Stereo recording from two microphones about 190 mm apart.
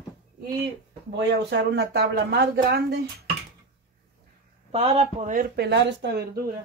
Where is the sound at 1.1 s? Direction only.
65° right (ahead or behind).